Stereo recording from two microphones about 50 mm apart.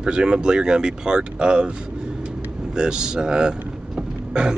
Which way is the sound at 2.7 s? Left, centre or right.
Centre.